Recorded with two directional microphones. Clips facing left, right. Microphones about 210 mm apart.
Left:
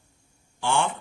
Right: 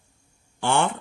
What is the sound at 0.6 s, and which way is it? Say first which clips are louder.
Speech: right 2 dB; 60° right (ahead or behind).